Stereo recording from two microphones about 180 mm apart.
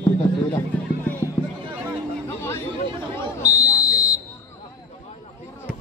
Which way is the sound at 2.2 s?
15° left (ahead or behind).